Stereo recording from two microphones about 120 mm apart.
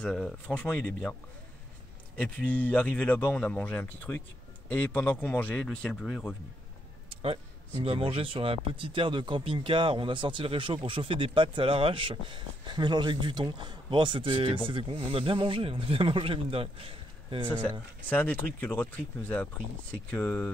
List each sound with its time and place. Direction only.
0.0 s speech: 5° left (ahead or behind)
2.1 s speech: 10° left (ahead or behind)
7.1 s a sound: 50° right (ahead or behind)
7.8 s speech: 50° right (ahead or behind)
17.6 s speech: 15° left (ahead or behind)